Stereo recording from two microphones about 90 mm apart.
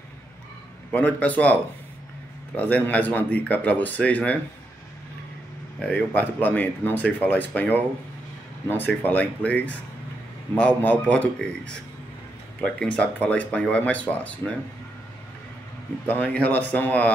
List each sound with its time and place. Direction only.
0.9 s speech: 15° left (ahead or behind)
5.8 s speech: 15° left (ahead or behind)
12.6 s speech: 10° left (ahead or behind)
16.1 s speech: 20° left (ahead or behind)